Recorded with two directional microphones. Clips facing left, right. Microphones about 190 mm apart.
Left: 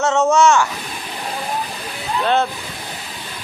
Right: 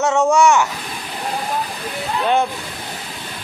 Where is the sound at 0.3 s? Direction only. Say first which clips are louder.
Even; 15° right (ahead or behind).